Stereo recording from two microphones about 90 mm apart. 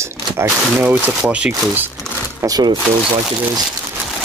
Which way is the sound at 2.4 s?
40° right (ahead or behind).